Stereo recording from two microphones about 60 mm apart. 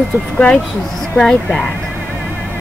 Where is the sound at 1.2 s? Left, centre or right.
Centre.